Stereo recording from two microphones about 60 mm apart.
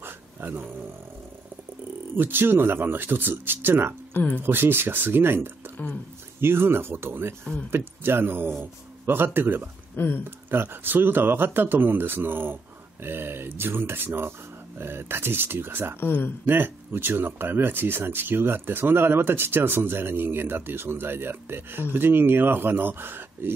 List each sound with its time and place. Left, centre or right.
0.0 s dog: right
2.1 s speech: right
4.1 s speech: left
4.4 s speech: right
9.9 s speech: left
10.2 s speech: right